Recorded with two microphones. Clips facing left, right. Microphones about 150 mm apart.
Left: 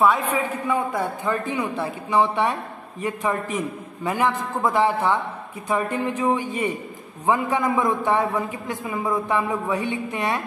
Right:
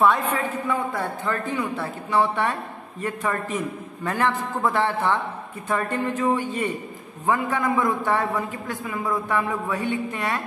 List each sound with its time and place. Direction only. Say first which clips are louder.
0.3 s a man's voice: left 2 dB; 15° left (ahead or behind)